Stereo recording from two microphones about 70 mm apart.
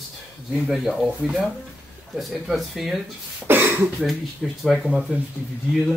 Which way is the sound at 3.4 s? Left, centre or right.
Right.